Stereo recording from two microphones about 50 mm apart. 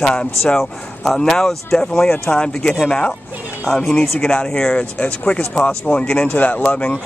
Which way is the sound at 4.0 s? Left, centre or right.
Left.